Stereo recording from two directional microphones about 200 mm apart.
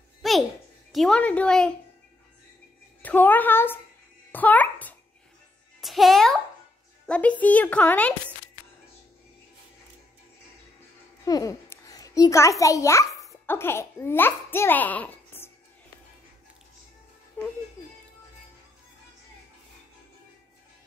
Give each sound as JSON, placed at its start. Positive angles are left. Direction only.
{"t": 0.2, "sound": "a sound", "side_deg": 0}
{"t": 0.9, "sound": "a woman's voice", "side_deg": 5}
{"t": 3.0, "sound": "a woman's voice", "side_deg": 10}
{"t": 11.2, "sound": "a child's voice", "side_deg": 20}
{"t": 17.4, "sound": "speech", "side_deg": 10}